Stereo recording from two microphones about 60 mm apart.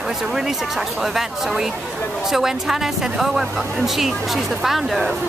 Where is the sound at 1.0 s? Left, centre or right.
Centre.